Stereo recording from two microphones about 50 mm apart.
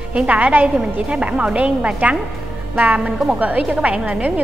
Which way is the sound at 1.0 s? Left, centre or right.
Right.